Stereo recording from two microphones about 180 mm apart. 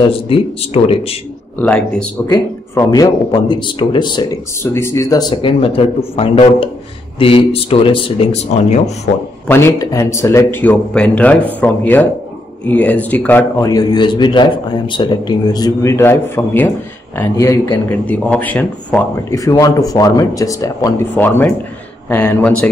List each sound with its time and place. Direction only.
0.0 s speech: 30° left (ahead or behind)
1.6 s a man's voice: 5° left (ahead or behind); by 4.3 s 25° left (ahead or behind)
4.7 s a man's voice: 15° left (ahead or behind); by 9.1 s 40° left (ahead or behind)
9.5 s a man's voice: 15° left (ahead or behind)
19.4 s a man's voice: 20° left (ahead or behind)